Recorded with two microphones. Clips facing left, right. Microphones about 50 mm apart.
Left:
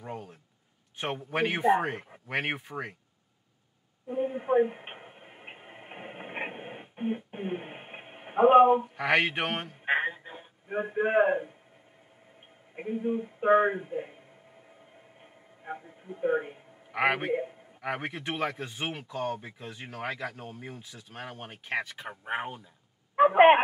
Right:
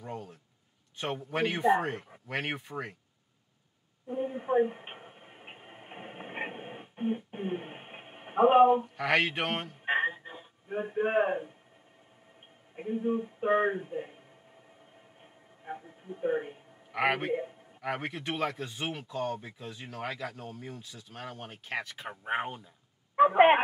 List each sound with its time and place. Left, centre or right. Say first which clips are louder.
0.0 s a sound: left 1 dB; left
0.9 s speech: left 2 dB; left
4.1 s a sound: left 3 dB; left
9.8 s music: left 1 dB; left
10.3 s a man's voice: left 2 dB; left
12.9 s speech: even; centre
15.6 s a sound: left 1 dB; centre
18.1 s speech: left 1 dB; left
21.8 s speech: right 1 dB; centre
23.1 s speech: left 2 dB; left